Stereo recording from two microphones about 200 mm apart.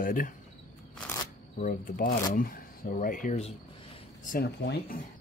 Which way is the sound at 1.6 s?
40° left (ahead or behind).